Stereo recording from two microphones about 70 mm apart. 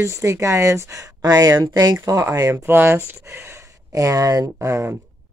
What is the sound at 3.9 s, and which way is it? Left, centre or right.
Speech, right.